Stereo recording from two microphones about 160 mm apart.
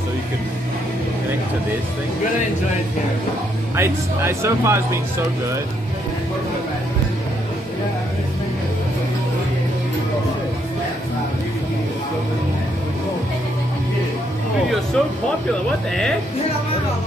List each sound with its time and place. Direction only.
3.7 s speech: 15° right (ahead or behind)
15.0 s speech: 5° left (ahead or behind)